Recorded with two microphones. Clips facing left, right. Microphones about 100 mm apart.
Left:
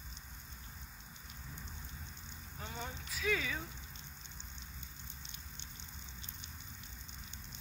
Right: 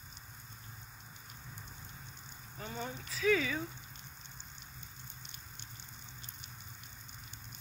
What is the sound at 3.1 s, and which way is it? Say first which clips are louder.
Speech: right 6 dB; 5° left (ahead or behind).